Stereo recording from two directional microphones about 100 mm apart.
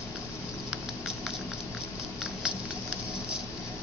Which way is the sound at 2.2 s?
5° right (ahead or behind).